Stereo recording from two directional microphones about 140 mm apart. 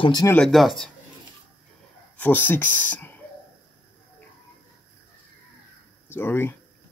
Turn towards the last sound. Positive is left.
turn(degrees=15)  # may be behind; listen again after turning